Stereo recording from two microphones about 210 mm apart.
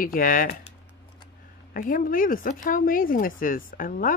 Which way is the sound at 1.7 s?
40° left (ahead or behind).